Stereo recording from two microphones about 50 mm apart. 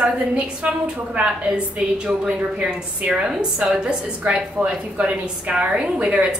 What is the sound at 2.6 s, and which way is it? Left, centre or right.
A woman's voice, centre.